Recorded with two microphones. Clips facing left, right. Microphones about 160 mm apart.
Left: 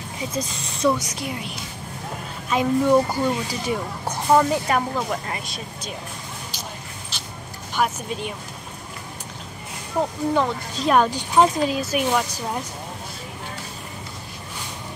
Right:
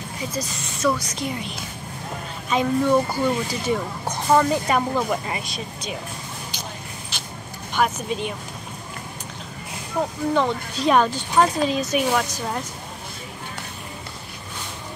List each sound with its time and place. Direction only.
0.3 s speech: 30° left (ahead or behind)
0.9 s speech: 10° left (ahead or behind)
2.5 s speech: 5° left (ahead or behind)
7.8 s speech: 5° left (ahead or behind)
10.3 s speech: centre (ahead or behind)
11.1 s speech: 15° left (ahead or behind)